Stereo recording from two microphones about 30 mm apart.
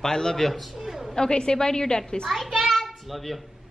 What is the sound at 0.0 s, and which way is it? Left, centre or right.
Speech, left.